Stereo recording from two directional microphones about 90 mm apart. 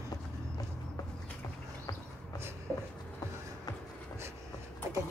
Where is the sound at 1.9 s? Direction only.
45° left (ahead or behind).